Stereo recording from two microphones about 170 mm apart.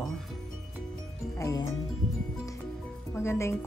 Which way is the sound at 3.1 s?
15° left (ahead or behind).